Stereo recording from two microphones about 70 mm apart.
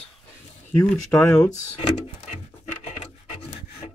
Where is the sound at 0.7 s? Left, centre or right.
Left.